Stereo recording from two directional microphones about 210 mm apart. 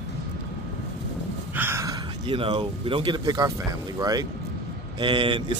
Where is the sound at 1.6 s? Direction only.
15° right (ahead or behind).